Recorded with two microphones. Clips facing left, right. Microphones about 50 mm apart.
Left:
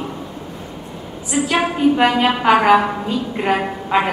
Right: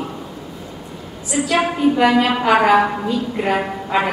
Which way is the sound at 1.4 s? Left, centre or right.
Left.